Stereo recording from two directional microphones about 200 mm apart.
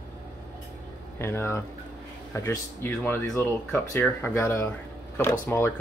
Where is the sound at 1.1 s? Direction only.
10° left (ahead or behind).